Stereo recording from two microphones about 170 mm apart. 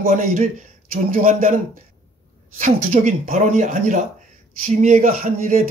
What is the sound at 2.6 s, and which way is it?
Speech, 50° right (ahead or behind).